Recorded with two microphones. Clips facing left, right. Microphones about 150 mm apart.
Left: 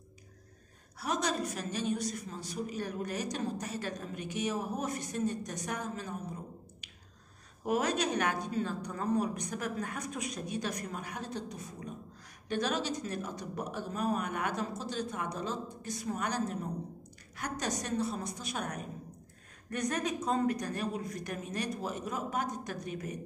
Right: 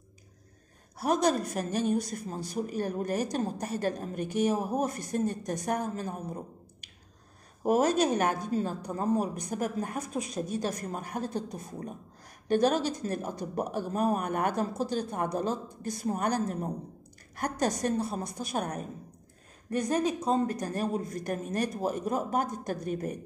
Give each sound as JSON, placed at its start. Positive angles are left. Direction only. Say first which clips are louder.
{"t": 0.9, "sound": "a woman's voice", "louder": "right 7 dB", "side_deg": -50}
{"t": 7.6, "sound": "a woman's voice", "louder": "right 6 dB", "side_deg": -45}
{"t": 10.3, "sound": "a woman's voice", "louder": "right 6 dB", "side_deg": -40}
{"t": 19.9, "sound": "a woman's voice", "louder": "right 6 dB", "side_deg": -30}